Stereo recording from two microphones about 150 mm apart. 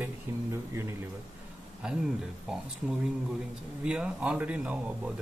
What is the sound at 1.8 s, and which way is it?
Speech, 5° right (ahead or behind).